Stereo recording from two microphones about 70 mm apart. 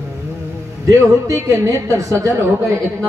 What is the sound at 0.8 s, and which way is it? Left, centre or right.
A man's voice, right.